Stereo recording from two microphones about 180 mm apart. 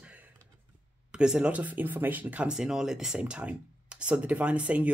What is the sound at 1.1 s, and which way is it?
Speech, 5° right (ahead or behind).